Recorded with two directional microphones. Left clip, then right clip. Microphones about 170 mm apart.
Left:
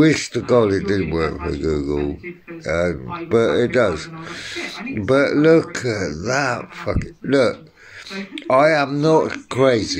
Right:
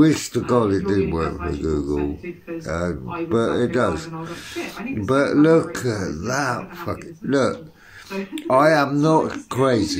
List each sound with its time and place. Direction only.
0.0 s speech: 15° left (ahead or behind)